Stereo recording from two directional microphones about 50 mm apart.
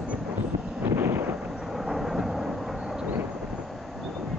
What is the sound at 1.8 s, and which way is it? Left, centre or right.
Thunder, centre.